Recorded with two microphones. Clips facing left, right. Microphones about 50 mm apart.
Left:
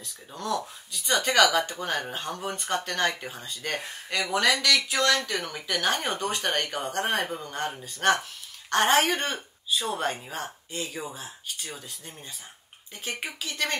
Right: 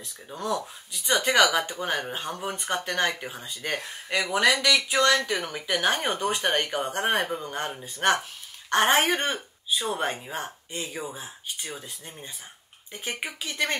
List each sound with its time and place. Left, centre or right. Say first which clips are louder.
0.0 s speech: right 2 dB; centre
5.0 s a woman's voice: right 2 dB; centre